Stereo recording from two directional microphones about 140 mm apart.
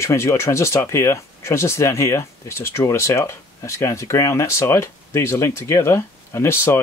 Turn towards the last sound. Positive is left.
turn(degrees=20)  # may be behind; listen again after turning